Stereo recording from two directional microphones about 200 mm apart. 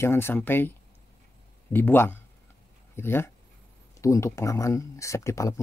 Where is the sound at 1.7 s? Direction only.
10° left (ahead or behind).